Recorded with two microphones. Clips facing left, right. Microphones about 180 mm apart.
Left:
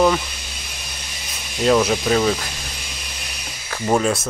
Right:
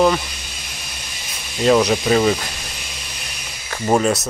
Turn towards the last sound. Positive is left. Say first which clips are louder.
# right 2 dB
turn(degrees=-15)  # may be behind; listen again after turning